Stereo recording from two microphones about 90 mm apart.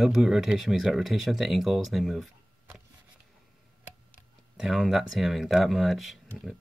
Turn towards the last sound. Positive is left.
turn(degrees=0)  # may be behind; listen again after turning